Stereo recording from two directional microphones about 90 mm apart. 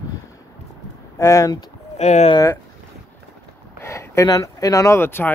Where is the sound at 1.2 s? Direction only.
35° left (ahead or behind).